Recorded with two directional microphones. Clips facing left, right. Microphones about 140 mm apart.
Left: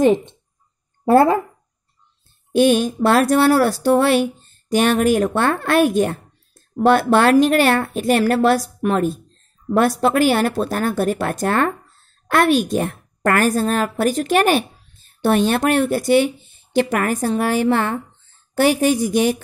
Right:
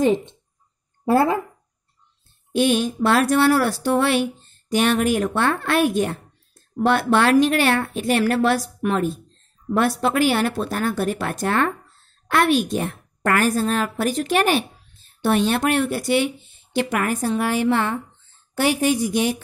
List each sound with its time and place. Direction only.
0.0 s speech: 60° left (ahead or behind)
1.0 s speech: 50° left (ahead or behind)
2.5 s speech: 45° left (ahead or behind)